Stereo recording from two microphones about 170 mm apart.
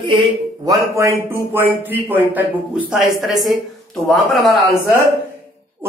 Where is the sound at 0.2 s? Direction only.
20° right (ahead or behind); by 4.6 s centre (ahead or behind).